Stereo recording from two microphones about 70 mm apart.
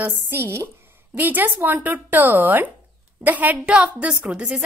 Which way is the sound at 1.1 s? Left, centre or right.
Right.